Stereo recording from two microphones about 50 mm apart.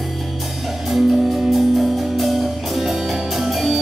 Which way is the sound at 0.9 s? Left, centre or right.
Centre.